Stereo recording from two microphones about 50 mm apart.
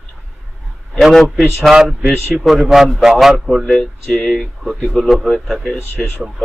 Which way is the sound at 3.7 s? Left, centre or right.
Centre.